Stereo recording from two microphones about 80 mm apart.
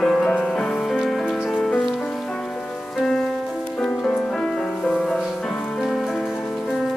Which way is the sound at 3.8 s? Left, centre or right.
Centre.